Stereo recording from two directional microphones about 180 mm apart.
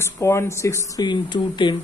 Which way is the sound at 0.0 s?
15° left (ahead or behind).